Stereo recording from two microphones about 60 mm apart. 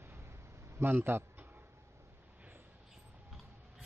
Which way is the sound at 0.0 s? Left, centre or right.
Right.